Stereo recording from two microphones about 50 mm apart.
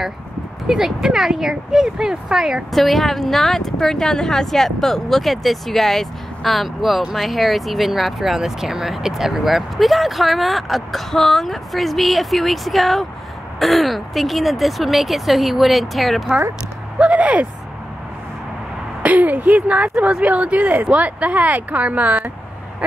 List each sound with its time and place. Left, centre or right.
0.7 s speech: centre
2.7 s speech: centre
17.0 s speech: right
19.0 s speech: right
20.9 s speech: right